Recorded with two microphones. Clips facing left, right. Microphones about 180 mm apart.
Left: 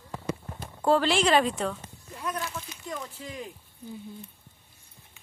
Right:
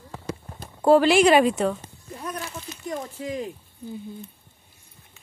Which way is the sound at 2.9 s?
40° right (ahead or behind).